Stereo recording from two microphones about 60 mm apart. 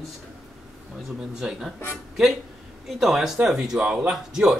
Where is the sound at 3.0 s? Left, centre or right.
Centre.